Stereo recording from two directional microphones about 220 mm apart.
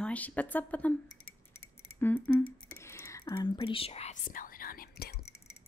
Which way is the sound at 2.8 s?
10° left (ahead or behind).